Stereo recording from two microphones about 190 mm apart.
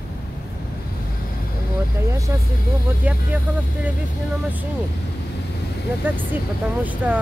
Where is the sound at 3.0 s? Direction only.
10° right (ahead or behind).